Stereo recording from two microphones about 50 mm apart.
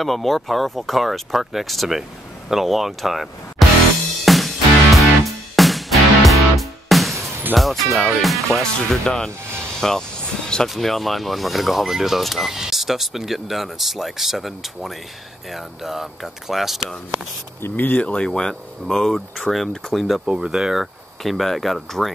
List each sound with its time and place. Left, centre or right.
0.0 s speech: centre
4.2 s music: centre
7.5 s speech: centre
9.0 s speech: centre
17.6 s speech: left
18.0 s speech: centre
20.2 s speech: centre